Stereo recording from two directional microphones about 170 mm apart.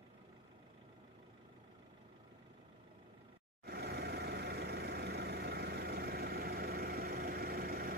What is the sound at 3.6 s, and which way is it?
Vehicle, 70° right (ahead or behind).